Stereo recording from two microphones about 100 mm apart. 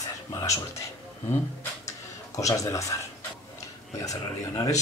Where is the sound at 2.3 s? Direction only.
35° left (ahead or behind).